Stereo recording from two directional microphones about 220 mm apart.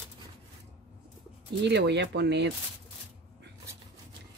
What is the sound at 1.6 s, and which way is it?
Speech, 50° right (ahead or behind).